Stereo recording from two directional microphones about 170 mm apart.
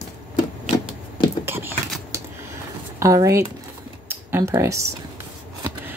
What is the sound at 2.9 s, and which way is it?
Speech, 20° right (ahead or behind).